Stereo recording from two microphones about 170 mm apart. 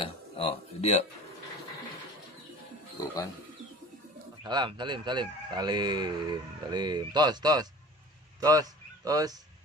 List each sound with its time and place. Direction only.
0.0 s speech: 35° left (ahead or behind)
4.4 s speech: 25° right (ahead or behind)